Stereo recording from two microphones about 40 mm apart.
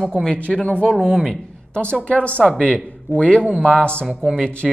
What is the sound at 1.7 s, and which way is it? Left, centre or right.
Speech, left.